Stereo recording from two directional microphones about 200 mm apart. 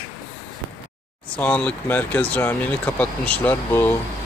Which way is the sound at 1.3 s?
5° left (ahead or behind).